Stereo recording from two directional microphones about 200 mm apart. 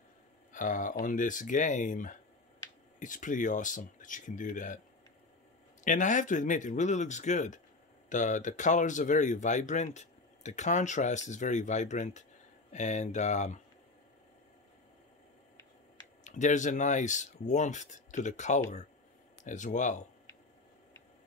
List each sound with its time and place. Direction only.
0.5 s speech: 40° left (ahead or behind)
5.9 s speech: 40° left (ahead or behind)
16.3 s speech: 40° left (ahead or behind)